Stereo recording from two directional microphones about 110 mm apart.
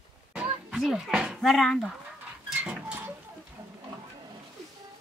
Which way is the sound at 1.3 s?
Centre (ahead or behind).